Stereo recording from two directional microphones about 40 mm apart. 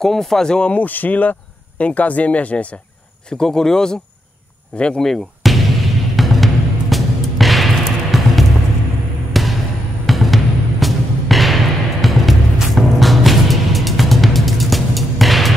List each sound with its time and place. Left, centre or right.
0.0 s speech: centre
0.7 s speech: left
3.3 s speech: centre
4.7 s speech: left
5.0 s music: centre